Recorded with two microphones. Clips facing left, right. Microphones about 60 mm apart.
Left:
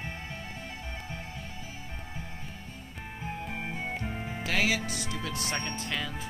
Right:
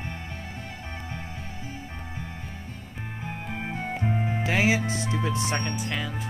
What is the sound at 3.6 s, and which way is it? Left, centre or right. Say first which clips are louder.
Music: right 8 dB; right.